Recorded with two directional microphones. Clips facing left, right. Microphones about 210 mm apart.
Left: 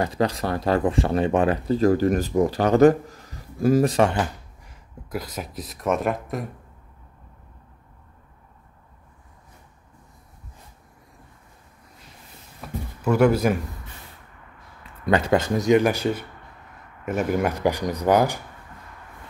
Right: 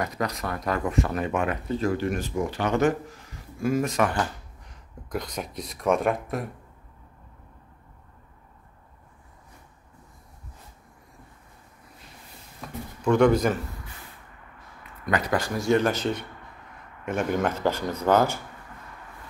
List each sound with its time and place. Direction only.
0.0 s speech: 30° left (ahead or behind)
4.6 s speech: 5° left (ahead or behind)
12.6 s a sound: 5° left (ahead or behind)
13.0 s speech: 5° left (ahead or behind)
15.0 s speech: 25° left (ahead or behind)